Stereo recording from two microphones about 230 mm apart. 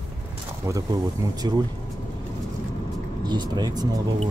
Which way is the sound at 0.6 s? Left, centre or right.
Centre.